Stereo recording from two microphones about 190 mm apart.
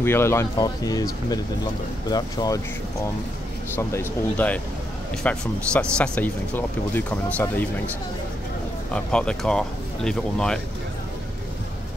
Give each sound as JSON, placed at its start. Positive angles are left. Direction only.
{"t": 0.0, "sound": "speech", "side_deg": 15}
{"t": 3.7, "sound": "speech", "side_deg": 10}
{"t": 8.9, "sound": "speech", "side_deg": 5}